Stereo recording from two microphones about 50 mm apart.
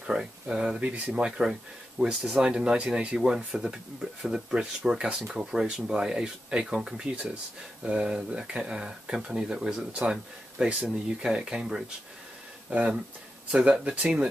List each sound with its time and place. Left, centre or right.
0.0 s speech: centre
0.7 s speech: right
1.1 s speech: centre